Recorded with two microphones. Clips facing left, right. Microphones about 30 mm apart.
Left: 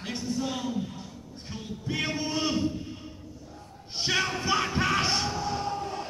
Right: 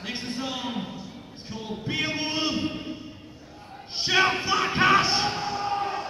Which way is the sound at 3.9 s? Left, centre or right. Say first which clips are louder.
Right 4 dB; centre.